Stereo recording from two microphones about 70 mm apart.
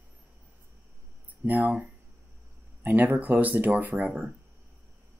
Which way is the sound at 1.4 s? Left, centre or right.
Right.